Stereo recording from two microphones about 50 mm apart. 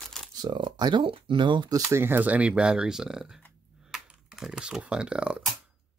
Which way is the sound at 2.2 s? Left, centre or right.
Right.